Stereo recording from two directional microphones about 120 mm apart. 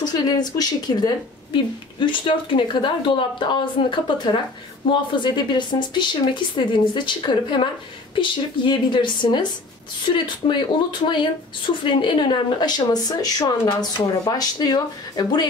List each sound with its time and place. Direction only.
0.0 s speech: 35° left (ahead or behind)